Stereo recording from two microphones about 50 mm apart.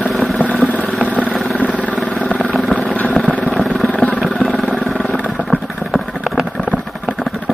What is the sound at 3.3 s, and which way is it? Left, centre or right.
Vehicle, left.